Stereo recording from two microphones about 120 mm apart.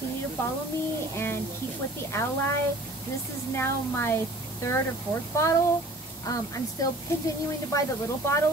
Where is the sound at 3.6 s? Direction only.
20° left (ahead or behind).